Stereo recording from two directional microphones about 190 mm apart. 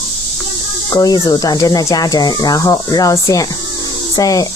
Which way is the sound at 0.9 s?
20° left (ahead or behind).